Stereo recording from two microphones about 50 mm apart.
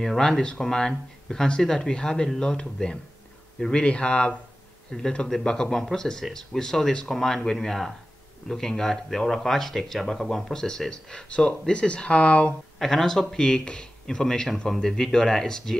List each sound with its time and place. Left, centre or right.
0.0 s a man's voice: centre
3.8 s speech: left
12.7 s speech: centre